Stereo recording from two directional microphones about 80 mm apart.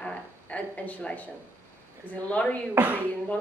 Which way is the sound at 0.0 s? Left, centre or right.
Centre.